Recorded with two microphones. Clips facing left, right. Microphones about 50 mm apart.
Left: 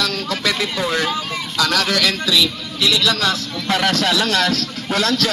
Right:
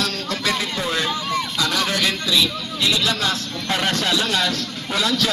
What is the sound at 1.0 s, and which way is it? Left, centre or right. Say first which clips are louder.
Speech: left 1 dB; left.